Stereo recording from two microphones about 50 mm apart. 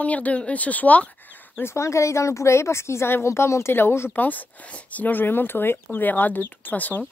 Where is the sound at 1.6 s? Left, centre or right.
Left.